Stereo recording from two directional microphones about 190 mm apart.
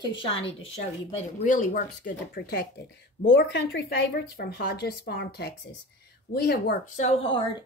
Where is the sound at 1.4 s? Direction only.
45° left (ahead or behind).